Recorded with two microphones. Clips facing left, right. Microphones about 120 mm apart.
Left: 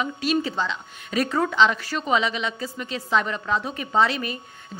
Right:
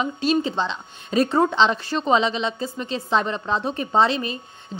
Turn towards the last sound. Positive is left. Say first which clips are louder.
# right 2 dB
turn(degrees=-25)  # may be behind; listen again after turning